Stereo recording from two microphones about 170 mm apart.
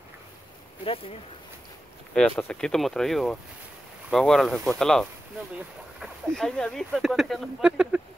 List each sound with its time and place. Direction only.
0.8 s speech: 35° left (ahead or behind)
2.1 s speech: 5° left (ahead or behind)